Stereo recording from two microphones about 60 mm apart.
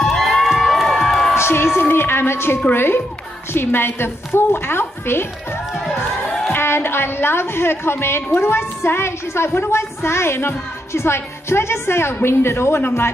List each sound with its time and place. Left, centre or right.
0.0 s crowd: centre
1.3 s a woman's voice: left
5.9 s music: centre
6.5 s a woman's voice: left